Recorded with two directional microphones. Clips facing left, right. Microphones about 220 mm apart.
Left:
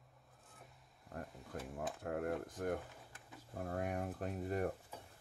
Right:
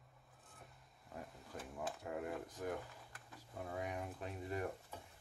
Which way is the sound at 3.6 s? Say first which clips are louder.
Left 4 dB; 50° left (ahead or behind).